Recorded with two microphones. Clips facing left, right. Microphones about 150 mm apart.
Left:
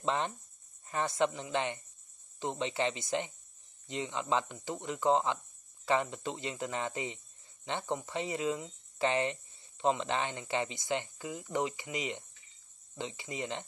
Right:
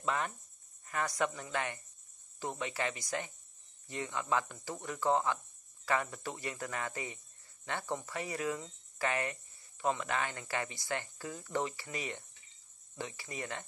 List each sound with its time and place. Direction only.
0.0 s speech: 25° left (ahead or behind)